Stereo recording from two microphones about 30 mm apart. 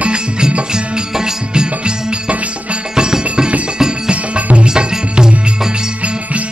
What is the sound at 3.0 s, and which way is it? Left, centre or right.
Music, right.